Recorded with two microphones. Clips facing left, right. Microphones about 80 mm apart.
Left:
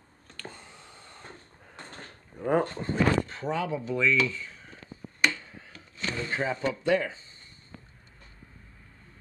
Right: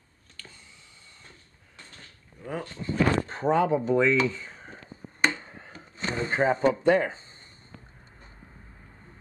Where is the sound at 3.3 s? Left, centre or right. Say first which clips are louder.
Right 7 dB; right.